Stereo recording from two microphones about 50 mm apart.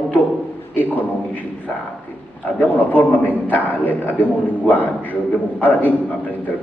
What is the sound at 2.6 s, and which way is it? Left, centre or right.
A man's voice, left.